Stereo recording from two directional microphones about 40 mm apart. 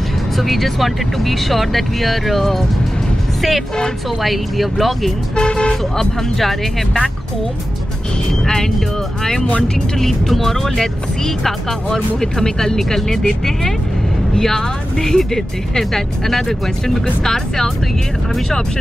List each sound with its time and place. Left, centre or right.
0.4 s speech: centre
5.3 s speech: left
6.2 s speech: centre
8.5 s speech: centre